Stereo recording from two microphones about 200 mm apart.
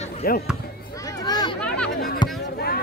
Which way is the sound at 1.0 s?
20° left (ahead or behind).